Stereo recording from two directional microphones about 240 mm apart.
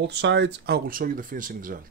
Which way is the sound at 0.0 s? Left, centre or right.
Right.